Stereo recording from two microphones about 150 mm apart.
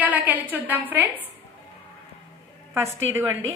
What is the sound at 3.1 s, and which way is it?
Speech, 20° right (ahead or behind).